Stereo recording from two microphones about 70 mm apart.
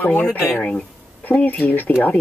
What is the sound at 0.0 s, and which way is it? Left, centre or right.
Speech, left.